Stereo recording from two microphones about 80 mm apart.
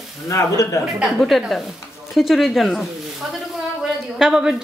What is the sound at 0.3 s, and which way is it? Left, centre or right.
Speech, left.